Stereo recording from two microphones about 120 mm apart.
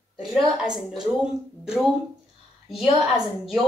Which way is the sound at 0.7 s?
5° right (ahead or behind).